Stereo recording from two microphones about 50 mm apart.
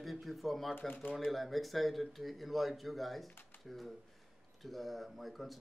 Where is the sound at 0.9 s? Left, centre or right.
Left.